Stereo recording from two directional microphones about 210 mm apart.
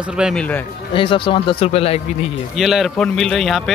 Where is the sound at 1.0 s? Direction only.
25° left (ahead or behind).